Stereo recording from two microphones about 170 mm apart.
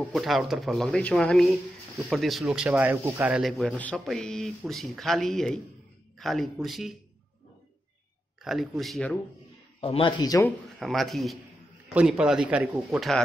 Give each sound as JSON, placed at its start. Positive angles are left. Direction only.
{"t": 0.0, "sound": "speech", "side_deg": 0}
{"t": 8.4, "sound": "speech", "side_deg": 0}
{"t": 9.8, "sound": "a man's voice", "side_deg": 30}
{"t": 10.8, "sound": "a man's voice", "side_deg": 0}